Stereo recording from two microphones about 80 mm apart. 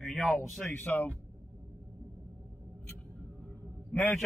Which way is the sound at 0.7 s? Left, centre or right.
Left.